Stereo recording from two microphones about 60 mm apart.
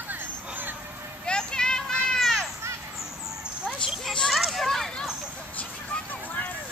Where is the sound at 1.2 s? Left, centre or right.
Centre.